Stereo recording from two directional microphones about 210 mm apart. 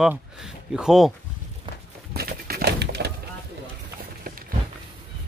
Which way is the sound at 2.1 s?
45° right (ahead or behind).